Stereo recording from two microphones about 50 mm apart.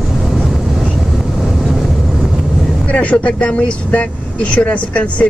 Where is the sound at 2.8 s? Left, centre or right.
Left.